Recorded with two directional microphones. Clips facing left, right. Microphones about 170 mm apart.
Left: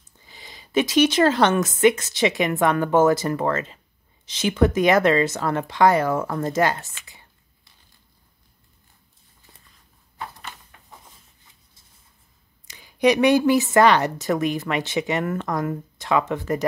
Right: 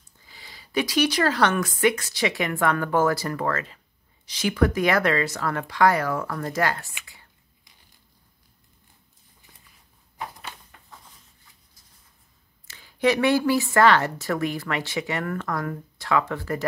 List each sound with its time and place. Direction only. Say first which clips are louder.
0.3 s a woman's voice: left 5 dB; 20° left (ahead or behind)
12.6 s a woman's voice: left 3 dB; 15° left (ahead or behind)